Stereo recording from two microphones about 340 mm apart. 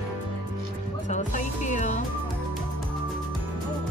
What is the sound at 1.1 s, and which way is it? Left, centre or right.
Music, left.